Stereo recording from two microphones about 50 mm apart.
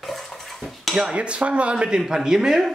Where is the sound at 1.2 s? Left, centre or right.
Right.